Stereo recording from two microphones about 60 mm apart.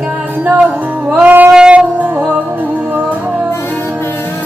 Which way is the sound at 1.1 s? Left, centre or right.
Right.